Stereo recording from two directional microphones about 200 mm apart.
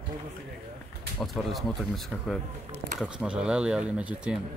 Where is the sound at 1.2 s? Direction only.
Centre (ahead or behind).